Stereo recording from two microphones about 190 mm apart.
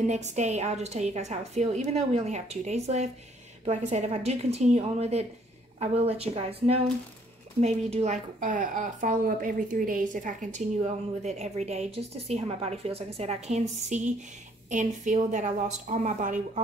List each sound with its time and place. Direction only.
0.0 s speech: 40° right (ahead or behind)